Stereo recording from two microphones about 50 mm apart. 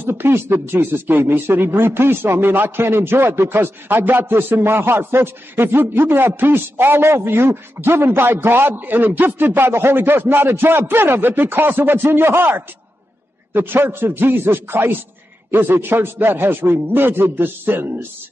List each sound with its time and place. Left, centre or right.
0.0 s a man's voice: right